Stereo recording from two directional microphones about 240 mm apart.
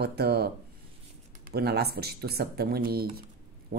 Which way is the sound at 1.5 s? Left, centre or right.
Right.